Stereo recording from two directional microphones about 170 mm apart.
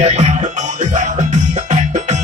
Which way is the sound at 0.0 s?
40° right (ahead or behind).